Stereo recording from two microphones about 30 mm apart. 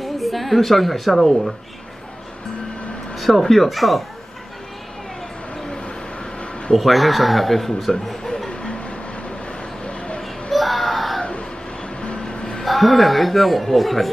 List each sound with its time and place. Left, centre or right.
0.0 s a woman's voice: centre
3.3 s a man's voice: centre
6.7 s a man's voice: centre
9.8 s a sound: left
10.2 s a sound: centre
12.0 s music: left
12.6 s a man's voice: centre